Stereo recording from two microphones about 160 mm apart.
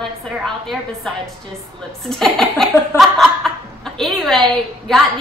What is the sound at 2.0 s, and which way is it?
Chuckle, centre (ahead or behind).